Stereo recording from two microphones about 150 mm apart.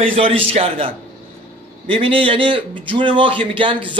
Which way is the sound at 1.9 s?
35° right (ahead or behind).